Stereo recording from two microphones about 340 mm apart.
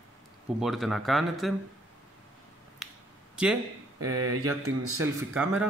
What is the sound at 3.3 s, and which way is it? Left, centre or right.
Speech, centre.